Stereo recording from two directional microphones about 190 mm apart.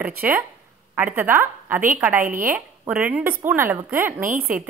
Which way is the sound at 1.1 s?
10° right (ahead or behind).